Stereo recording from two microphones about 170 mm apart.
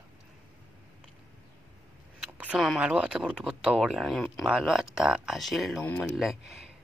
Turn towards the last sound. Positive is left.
turn(degrees=0)  # may be behind; listen again after turning